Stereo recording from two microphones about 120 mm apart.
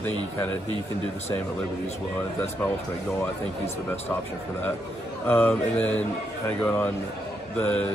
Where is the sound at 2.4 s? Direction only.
20° left (ahead or behind).